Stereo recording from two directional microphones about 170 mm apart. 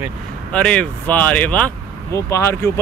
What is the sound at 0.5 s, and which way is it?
Speech, 5° left (ahead or behind).